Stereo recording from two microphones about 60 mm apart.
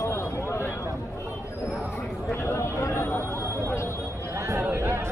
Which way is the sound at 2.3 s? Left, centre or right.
Left.